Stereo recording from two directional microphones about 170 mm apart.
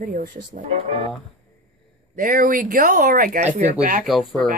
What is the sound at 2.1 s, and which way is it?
Speech, 55° right (ahead or behind).